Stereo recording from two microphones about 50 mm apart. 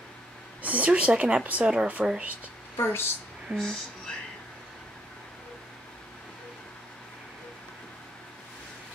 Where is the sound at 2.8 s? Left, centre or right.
Left.